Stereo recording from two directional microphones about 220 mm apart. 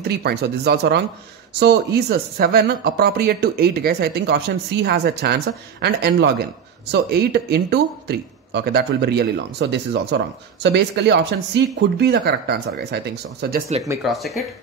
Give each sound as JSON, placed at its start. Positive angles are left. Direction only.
{"t": 0.0, "sound": "speech", "side_deg": -45}
{"t": 14.0, "sound": "speech", "side_deg": 0}